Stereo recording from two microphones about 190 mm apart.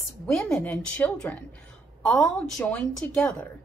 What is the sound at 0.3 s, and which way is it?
A woman's voice, 5° left (ahead or behind).